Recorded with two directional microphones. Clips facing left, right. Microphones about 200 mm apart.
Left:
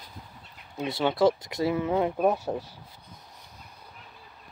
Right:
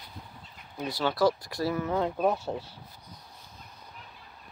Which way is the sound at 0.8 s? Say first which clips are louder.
Left 3 dB; 20° left (ahead or behind).